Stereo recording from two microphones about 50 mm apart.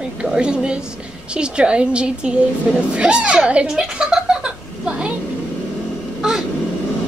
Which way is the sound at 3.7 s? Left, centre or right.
Centre.